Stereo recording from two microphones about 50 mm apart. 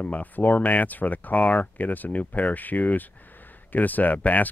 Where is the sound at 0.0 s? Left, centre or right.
Left.